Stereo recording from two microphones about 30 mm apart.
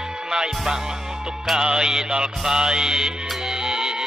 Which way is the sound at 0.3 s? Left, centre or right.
Right.